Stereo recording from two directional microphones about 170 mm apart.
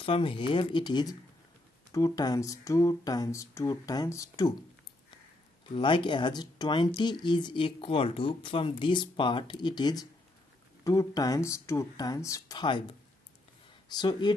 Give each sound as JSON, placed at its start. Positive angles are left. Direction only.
{"t": 0.0, "sound": "speech", "side_deg": 30}
{"t": 5.8, "sound": "speech", "side_deg": 30}
{"t": 13.8, "sound": "speech", "side_deg": 25}